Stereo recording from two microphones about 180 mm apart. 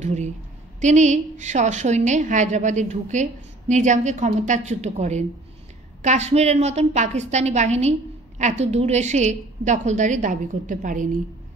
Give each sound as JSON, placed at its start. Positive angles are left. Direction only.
{"t": 0.0, "sound": "a woman's voice", "side_deg": -40}